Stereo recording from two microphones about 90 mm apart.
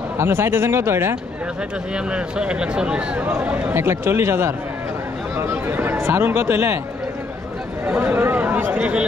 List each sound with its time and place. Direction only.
0.2 s speech: 25° right (ahead or behind)
2.1 s speech: 10° right (ahead or behind); by 6.8 s 25° right (ahead or behind)
7.8 s speech: 20° right (ahead or behind)